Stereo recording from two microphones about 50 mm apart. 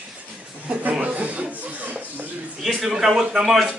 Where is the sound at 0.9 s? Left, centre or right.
Right.